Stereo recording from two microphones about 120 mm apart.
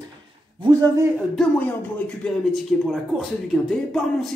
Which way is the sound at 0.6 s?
35° right (ahead or behind).